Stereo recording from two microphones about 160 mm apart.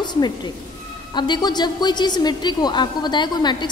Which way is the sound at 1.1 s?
30° left (ahead or behind).